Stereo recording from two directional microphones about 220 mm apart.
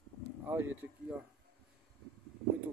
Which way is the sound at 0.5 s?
10° right (ahead or behind).